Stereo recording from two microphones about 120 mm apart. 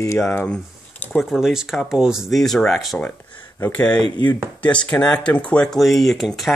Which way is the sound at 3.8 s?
35° left (ahead or behind).